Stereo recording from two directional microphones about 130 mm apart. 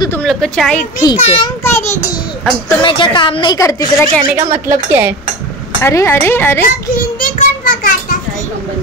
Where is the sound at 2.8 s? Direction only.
40° left (ahead or behind).